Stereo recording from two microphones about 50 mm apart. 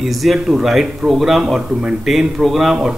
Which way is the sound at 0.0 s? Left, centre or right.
Centre.